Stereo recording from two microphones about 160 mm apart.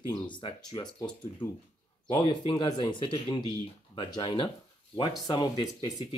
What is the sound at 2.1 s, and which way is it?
Speech, 30° left (ahead or behind).